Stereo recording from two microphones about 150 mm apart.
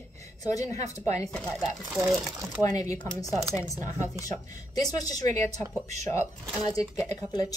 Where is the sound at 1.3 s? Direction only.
5° left (ahead or behind).